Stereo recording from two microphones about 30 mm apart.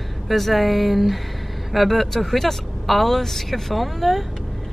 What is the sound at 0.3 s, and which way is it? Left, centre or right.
Speech, centre.